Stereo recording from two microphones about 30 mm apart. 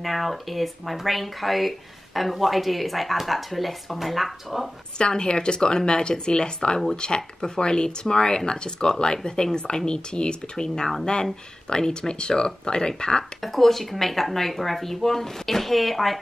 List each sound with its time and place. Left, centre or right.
0.0 s speech: centre
4.9 s speech: left
11.9 s speech: left
13.4 s speech: centre